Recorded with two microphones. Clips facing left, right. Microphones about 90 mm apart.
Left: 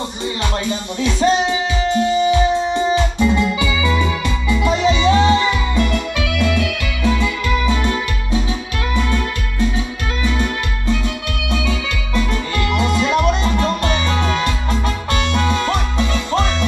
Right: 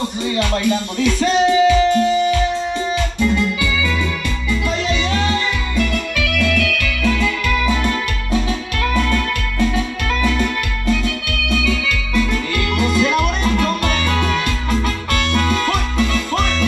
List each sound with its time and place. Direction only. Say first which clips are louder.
0.4 s music: right 5 dB; 20° left (ahead or behind)
10.3 s organ: right 1 dB; 20° left (ahead or behind)